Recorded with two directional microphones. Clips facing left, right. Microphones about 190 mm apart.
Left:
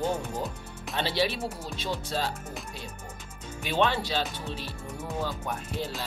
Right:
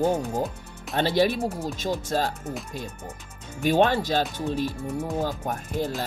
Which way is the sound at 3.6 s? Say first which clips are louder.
Right 6 dB; 45° right (ahead or behind).